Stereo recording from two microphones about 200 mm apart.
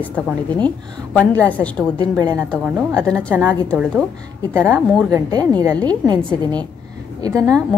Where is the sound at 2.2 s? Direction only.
15° right (ahead or behind).